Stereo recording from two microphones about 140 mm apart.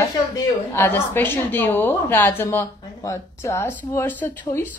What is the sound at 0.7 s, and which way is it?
A woman's voice, 15° left (ahead or behind).